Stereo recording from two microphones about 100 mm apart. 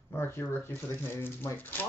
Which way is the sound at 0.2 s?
20° left (ahead or behind).